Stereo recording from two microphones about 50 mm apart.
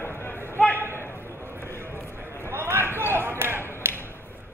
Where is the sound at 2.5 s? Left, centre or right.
Right.